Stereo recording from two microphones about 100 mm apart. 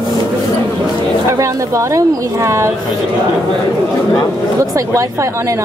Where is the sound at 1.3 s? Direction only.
30° right (ahead or behind).